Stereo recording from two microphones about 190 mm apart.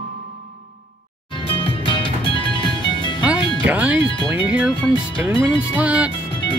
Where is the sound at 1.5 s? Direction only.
25° left (ahead or behind).